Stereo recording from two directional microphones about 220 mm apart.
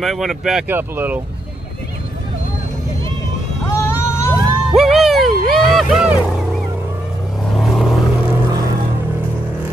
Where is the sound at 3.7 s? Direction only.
10° left (ahead or behind).